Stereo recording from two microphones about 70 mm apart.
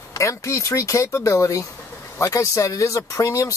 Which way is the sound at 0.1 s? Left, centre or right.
Left.